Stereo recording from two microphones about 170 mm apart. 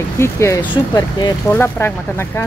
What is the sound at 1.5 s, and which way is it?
Speech, 15° left (ahead or behind).